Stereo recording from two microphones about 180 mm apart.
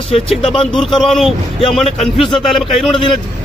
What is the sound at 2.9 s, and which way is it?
Speech, 25° left (ahead or behind).